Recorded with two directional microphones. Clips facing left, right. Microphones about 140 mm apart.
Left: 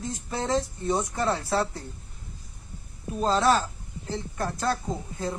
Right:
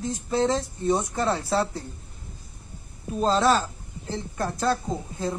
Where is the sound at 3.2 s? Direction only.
25° right (ahead or behind).